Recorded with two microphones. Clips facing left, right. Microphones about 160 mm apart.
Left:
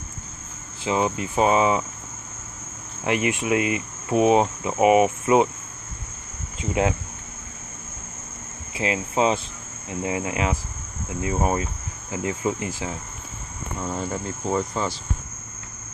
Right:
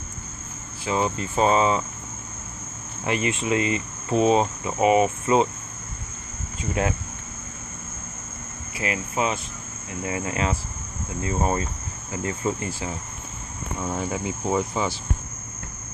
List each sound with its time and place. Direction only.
0.8 s cricket: 15° left (ahead or behind)
3.0 s cricket: 15° left (ahead or behind)
6.6 s speech: 20° left (ahead or behind)
8.7 s speech: 25° left (ahead or behind)
10.0 s cricket: 15° left (ahead or behind)
13.7 s speech: 5° right (ahead or behind)